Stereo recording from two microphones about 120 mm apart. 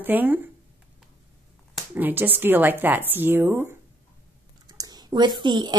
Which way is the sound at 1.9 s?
15° right (ahead or behind).